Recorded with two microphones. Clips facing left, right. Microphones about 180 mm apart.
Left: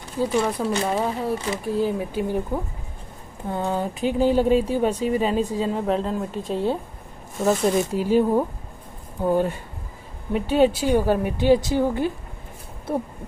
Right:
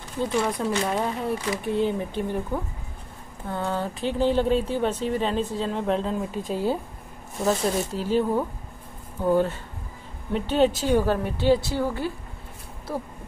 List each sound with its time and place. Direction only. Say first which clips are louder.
0.2 s speech: left 3 dB; 5° left (ahead or behind)
7.4 s speech: left 4 dB; 10° left (ahead or behind)